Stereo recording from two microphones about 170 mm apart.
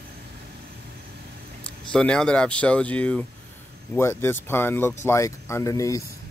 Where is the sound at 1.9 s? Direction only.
5° left (ahead or behind).